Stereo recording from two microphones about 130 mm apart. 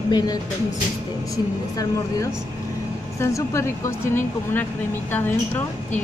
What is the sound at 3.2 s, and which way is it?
A woman's voice, 20° left (ahead or behind).